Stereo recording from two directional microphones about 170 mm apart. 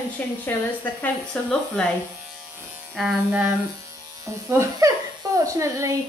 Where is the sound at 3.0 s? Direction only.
Centre (ahead or behind).